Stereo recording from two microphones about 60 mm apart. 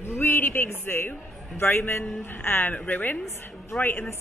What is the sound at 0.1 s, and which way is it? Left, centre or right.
Speech, left.